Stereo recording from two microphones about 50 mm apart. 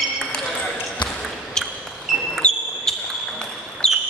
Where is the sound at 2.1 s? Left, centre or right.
Centre.